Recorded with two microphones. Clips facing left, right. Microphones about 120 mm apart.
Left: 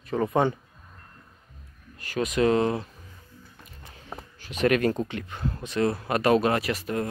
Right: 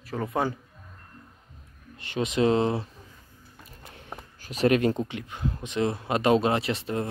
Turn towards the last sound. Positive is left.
turn(degrees=-25)  # may be behind; listen again after turning